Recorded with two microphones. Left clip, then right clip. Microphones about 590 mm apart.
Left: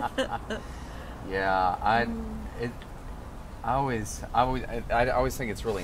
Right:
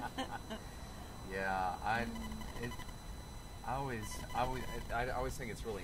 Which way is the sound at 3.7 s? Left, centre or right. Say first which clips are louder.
Left 13 dB; left.